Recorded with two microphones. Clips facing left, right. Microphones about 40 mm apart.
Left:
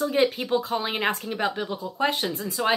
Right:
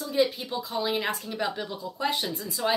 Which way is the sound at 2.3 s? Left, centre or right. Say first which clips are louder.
Left 3 dB; left.